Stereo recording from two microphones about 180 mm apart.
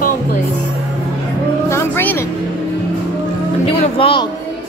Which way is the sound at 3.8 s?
30° left (ahead or behind).